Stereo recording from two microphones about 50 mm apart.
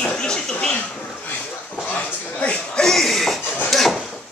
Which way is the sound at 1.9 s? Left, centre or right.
Left.